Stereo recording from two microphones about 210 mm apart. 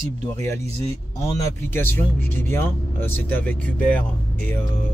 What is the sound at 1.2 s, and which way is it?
Speech, 10° left (ahead or behind).